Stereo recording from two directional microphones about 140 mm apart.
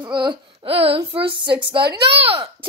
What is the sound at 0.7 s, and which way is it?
A child's voice, 40° right (ahead or behind).